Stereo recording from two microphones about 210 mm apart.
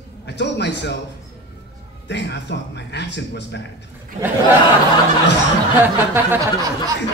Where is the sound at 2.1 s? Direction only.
55° left (ahead or behind).